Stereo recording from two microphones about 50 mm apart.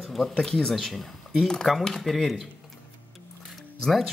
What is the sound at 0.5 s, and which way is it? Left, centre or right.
Speech, centre.